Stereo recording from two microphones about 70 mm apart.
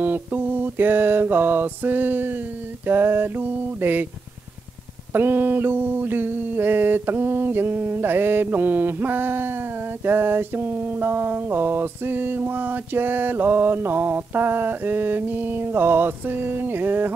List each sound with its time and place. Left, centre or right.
0.0 s mantra: right
5.1 s mantra: right